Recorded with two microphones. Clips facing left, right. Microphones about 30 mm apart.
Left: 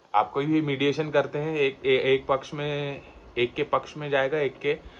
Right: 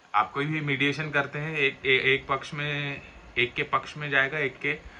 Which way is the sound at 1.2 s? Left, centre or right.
Right.